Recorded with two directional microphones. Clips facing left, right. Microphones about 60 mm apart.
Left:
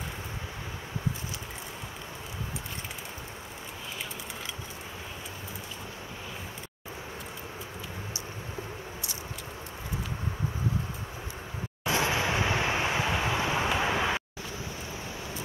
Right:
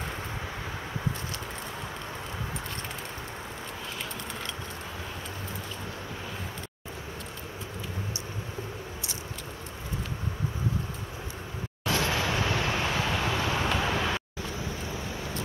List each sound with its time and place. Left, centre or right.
11.8 s vehicle: left